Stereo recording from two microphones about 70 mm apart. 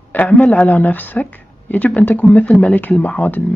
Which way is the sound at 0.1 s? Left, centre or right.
Centre.